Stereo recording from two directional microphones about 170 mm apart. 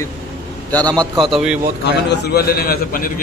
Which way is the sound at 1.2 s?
Centre (ahead or behind).